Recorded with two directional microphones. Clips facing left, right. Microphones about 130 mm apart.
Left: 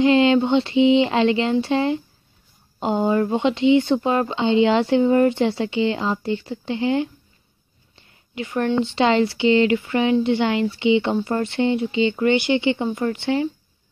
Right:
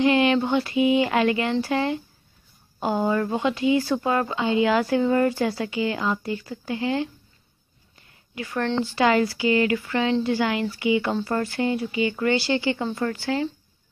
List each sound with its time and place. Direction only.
0.0 s speech: 25° left (ahead or behind)